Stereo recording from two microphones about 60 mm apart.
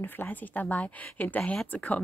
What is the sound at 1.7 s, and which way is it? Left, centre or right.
Speech, left.